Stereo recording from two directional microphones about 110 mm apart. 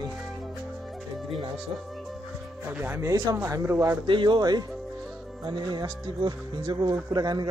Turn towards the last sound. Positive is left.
turn(degrees=-40)  # may be behind; listen again after turning